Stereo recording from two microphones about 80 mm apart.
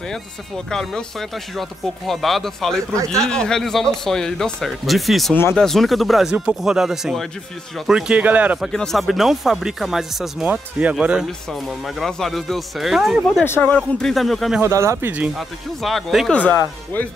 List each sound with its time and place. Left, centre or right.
0.7 s speech: centre
5.3 s speech: left
5.6 s speech: centre
8.2 s speech: centre
8.7 s speech: centre
11.8 s speech: centre
13.5 s speech: left
14.0 s speech: centre
14.6 s speech: right
15.3 s speech: centre
16.3 s speech: centre